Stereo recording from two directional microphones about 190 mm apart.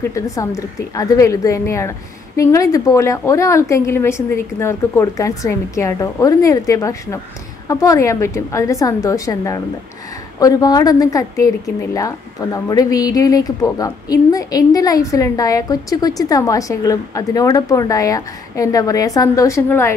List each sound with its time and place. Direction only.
0.1 s a woman's voice: 15° left (ahead or behind)
12.6 s a woman's voice: 20° left (ahead or behind)